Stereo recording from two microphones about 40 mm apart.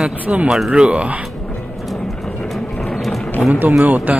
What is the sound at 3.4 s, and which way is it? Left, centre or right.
Speech, centre.